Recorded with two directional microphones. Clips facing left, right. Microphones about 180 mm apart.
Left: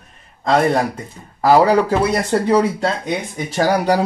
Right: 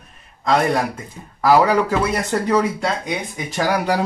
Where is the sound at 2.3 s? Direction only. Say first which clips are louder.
Left 4 dB; 30° left (ahead or behind).